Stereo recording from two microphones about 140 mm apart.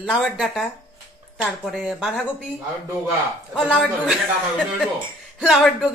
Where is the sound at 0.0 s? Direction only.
Centre (ahead or behind).